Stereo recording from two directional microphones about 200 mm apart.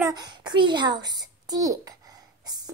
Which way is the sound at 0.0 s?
20° right (ahead or behind).